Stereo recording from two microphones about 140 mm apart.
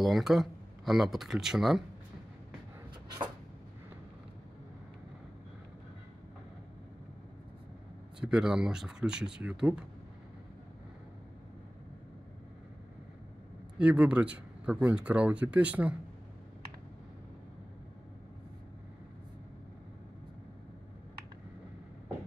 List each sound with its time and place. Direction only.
0.0 s speech: centre (ahead or behind)
8.2 s speech: 5° right (ahead or behind)
13.7 s speech: 10° right (ahead or behind)